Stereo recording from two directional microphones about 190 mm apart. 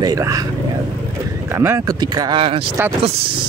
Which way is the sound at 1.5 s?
15° right (ahead or behind).